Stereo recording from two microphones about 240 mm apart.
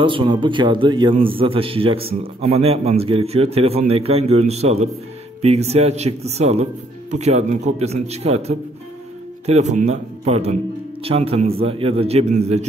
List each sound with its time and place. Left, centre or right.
0.0 s a man's voice: centre